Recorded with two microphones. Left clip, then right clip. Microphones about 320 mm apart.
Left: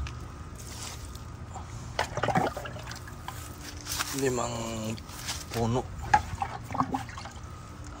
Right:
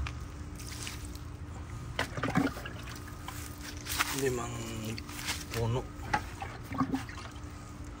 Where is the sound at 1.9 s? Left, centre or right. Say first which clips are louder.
Left 5 dB; left.